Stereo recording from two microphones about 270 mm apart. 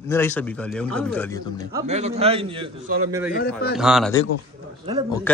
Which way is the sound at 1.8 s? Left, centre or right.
Right.